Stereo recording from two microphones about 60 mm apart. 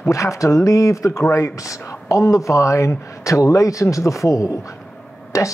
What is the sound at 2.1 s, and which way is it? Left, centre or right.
Speech, left.